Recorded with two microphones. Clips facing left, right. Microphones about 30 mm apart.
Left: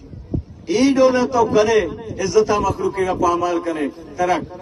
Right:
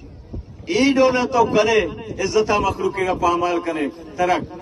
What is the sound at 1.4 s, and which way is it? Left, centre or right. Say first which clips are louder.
Speech: left 1 dB; right.